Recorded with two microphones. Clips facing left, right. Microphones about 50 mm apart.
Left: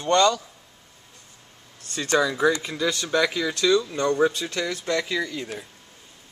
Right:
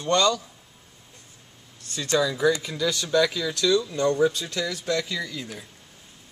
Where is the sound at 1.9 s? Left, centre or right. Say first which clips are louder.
Left 2 dB; left.